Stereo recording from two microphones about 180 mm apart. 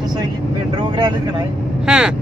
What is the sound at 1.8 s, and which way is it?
Speech, 5° right (ahead or behind).